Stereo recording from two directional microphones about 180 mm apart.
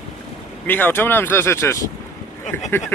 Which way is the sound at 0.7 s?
10° left (ahead or behind).